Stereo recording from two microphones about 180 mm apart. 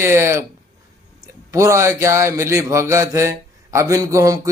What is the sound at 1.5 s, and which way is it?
A man's voice, 15° right (ahead or behind).